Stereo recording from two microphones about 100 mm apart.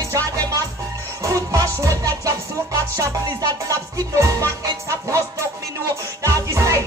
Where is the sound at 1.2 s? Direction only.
35° right (ahead or behind).